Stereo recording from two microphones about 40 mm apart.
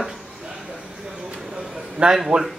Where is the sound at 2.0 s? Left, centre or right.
Right.